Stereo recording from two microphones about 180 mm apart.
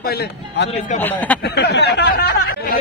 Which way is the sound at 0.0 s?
60° left (ahead or behind).